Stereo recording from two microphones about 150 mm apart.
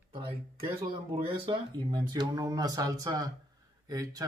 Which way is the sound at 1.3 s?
30° right (ahead or behind).